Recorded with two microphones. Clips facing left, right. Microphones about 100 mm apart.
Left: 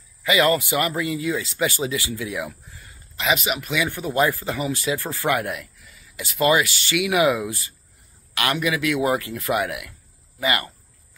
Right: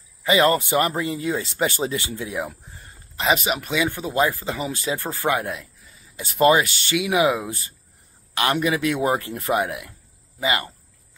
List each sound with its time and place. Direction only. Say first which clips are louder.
0.2 s speech: right 1 dB; 35° right (ahead or behind)
3.7 s speech: even; 20° right (ahead or behind)
5.9 s speech: right 2 dB; 40° right (ahead or behind)
7.0 s speech: left 1 dB; 20° right (ahead or behind)
8.5 s speech: right 2 dB; 35° right (ahead or behind)
8.8 s speech: even; 20° right (ahead or behind)